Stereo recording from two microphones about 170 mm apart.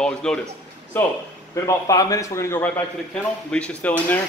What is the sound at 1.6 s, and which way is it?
A man's voice, 20° left (ahead or behind).